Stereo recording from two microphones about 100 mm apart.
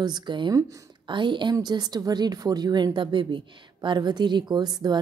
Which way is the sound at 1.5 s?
40° right (ahead or behind).